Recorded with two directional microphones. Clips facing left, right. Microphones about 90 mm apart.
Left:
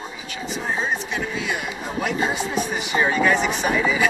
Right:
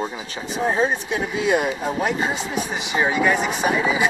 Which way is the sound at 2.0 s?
20° right (ahead or behind).